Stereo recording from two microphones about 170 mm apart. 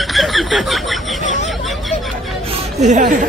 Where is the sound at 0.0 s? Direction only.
Centre (ahead or behind).